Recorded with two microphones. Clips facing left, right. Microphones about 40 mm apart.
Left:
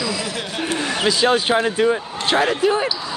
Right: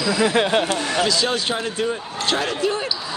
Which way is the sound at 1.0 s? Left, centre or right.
Left.